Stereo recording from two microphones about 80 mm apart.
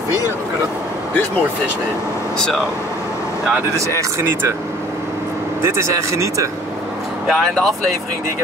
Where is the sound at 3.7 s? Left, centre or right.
Right.